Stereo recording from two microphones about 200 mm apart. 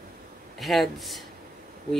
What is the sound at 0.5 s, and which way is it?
Speech, centre (ahead or behind).